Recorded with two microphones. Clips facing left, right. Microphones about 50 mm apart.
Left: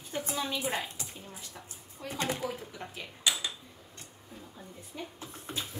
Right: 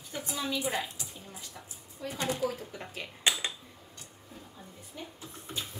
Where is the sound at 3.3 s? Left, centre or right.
Right.